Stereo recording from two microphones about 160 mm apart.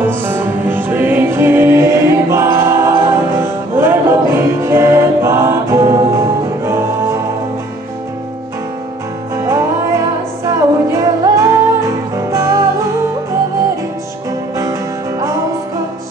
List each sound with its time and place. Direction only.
0.0 s music: 15° right (ahead or behind)
9.4 s music: 15° right (ahead or behind)
14.6 s music: 20° right (ahead or behind)